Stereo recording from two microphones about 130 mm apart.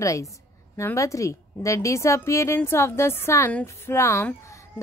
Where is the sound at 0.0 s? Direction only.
25° left (ahead or behind).